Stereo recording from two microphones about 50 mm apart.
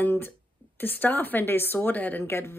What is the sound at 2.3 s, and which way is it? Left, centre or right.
Speech, left.